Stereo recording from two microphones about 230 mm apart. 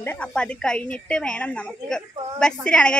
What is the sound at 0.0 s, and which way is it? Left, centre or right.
A woman's voice, centre.